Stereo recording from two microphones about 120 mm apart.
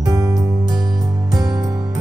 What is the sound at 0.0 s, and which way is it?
Music, 30° right (ahead or behind).